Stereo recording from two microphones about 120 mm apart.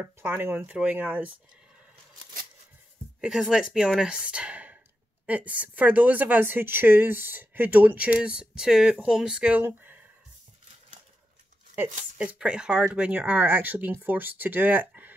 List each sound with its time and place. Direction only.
0.0 s speech: 15° right (ahead or behind)
3.2 s speech: 5° right (ahead or behind)
12.2 s speech: 10° right (ahead or behind)